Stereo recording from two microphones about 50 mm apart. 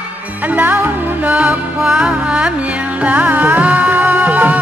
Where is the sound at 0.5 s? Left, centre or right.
Right.